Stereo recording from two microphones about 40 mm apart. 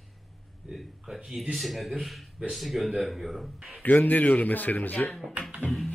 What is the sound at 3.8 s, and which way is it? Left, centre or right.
Speech, left.